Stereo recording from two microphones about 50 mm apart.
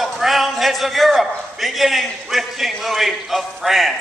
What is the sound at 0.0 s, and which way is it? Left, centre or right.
A man's voice, centre.